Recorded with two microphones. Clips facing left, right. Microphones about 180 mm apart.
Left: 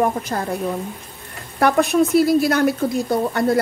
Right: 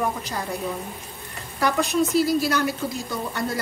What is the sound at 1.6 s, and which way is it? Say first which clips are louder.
A woman's voice: left 6 dB; 60° left (ahead or behind).